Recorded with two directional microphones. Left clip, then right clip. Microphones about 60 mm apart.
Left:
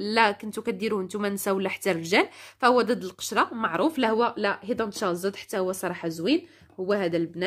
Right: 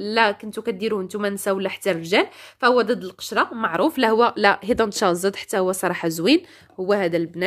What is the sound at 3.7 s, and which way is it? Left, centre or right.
Speech, right.